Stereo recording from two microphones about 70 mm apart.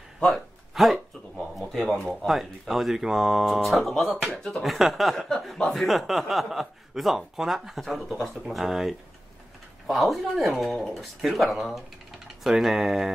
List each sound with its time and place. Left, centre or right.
0.2 s speech: centre
4.4 s speech: centre
4.6 s chuckle: centre